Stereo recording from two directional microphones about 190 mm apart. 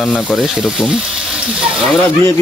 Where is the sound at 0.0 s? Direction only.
Centre (ahead or behind).